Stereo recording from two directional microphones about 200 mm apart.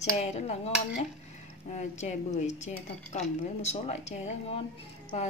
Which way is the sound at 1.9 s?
35° left (ahead or behind).